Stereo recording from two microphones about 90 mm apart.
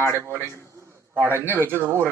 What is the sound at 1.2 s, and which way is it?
Speech, 25° right (ahead or behind).